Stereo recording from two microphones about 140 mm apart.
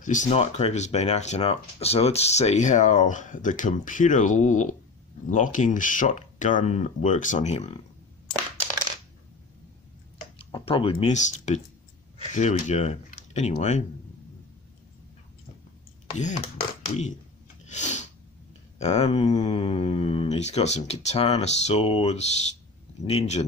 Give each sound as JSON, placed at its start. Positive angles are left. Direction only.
{"t": 0.0, "sound": "speech", "side_deg": 60}
{"t": 10.4, "sound": "speech", "side_deg": 40}
{"t": 16.1, "sound": "speech", "side_deg": 60}
{"t": 17.6, "sound": "sneeze", "side_deg": 55}
{"t": 18.8, "sound": "speech", "side_deg": 50}